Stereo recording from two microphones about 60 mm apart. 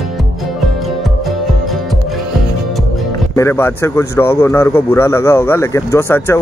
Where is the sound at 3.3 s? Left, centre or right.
Left.